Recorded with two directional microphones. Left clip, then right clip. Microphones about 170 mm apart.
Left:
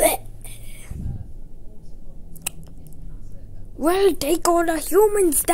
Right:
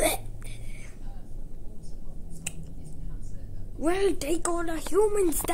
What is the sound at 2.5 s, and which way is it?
Squish, 25° left (ahead or behind).